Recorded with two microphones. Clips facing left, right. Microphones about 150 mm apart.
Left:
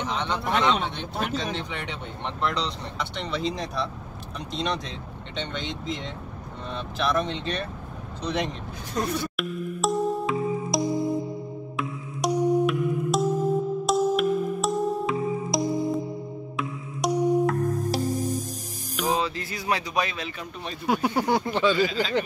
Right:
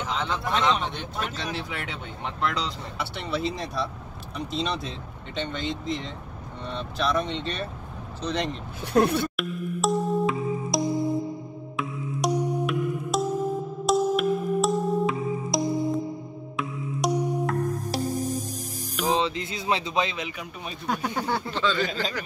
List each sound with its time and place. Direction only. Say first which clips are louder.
0.0 s speech: left 1 dB; centre (ahead or behind)
8.9 s speech: right 6 dB; 60° right (ahead or behind)
9.4 s music: even; centre (ahead or behind)
19.1 s music: right 2 dB; 20° right (ahead or behind)
20.8 s speech: left 4 dB; 10° left (ahead or behind)